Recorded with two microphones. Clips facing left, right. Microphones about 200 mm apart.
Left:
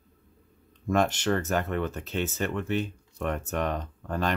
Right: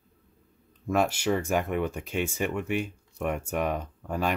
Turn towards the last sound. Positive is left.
turn(degrees=-10)  # may be behind; listen again after turning